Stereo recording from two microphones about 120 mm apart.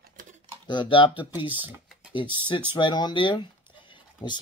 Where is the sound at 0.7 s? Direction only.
45° left (ahead or behind).